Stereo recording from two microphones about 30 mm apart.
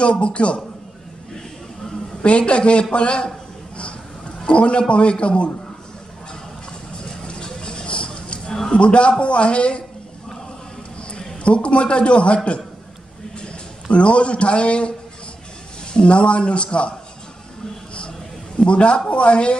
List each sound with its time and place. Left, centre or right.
0.0 s a man's voice: left
2.2 s a man's voice: left
4.5 s a man's voice: left
7.4 s vehicle: left
8.7 s a man's voice: left
11.4 s a man's voice: left
13.9 s a man's voice: left
18.6 s a man's voice: left